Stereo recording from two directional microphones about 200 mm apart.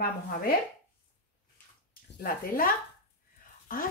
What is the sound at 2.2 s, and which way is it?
Speech, 45° left (ahead or behind).